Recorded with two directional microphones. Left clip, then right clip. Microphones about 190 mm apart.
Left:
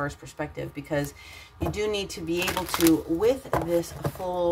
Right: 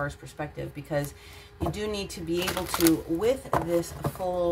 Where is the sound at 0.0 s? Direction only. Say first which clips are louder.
Left 2 dB; 25° left (ahead or behind).